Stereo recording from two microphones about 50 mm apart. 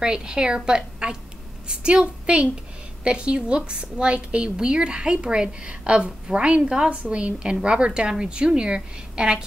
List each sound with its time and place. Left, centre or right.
0.0 s a woman's voice: centre